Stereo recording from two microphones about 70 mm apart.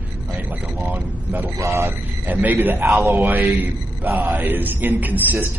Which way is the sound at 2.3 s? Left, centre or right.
Right.